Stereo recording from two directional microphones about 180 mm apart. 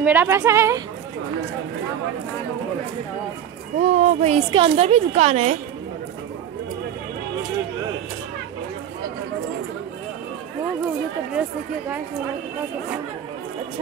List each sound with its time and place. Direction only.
0.0 s a woman's voice: 10° right (ahead or behind)
3.7 s speech: 40° right (ahead or behind)